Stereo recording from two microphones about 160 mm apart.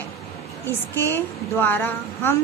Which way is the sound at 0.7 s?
15° left (ahead or behind).